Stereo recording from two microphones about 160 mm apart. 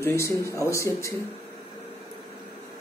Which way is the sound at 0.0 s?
15° left (ahead or behind).